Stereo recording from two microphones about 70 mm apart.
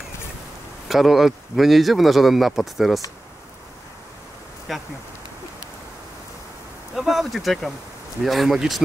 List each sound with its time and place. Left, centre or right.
0.8 s speech: centre
4.7 s speech: centre
7.0 s speech: centre